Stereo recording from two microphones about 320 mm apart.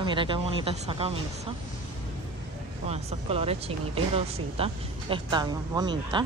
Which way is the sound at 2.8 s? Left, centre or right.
Centre.